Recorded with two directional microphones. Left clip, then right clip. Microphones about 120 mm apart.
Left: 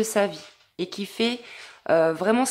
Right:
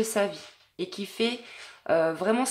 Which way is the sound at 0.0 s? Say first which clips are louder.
Left 3 dB; 35° left (ahead or behind).